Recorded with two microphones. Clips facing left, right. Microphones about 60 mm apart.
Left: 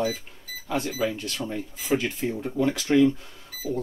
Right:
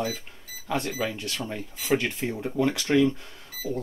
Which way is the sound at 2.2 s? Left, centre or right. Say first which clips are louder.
Left 2 dB; right.